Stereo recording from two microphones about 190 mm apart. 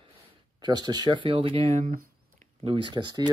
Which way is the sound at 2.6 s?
25° right (ahead or behind).